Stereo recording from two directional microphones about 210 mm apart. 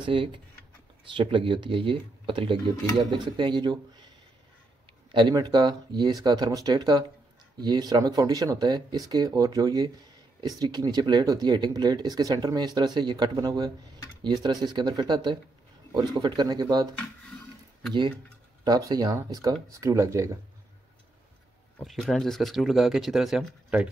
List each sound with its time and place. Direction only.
0.0 s speech: 25° right (ahead or behind)
5.1 s speech: 20° right (ahead or behind)
18.6 s speech: 20° right (ahead or behind)
21.7 s speech: 5° left (ahead or behind)